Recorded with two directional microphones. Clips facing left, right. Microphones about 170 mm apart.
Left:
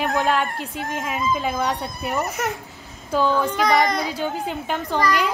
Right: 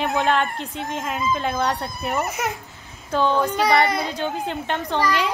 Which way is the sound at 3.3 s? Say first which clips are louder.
Right 1 dB; 15° right (ahead or behind).